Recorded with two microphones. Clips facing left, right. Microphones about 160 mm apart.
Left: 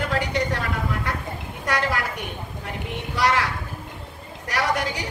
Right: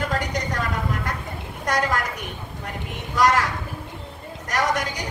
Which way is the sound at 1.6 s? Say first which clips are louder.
Right 1 dB; 45° right (ahead or behind).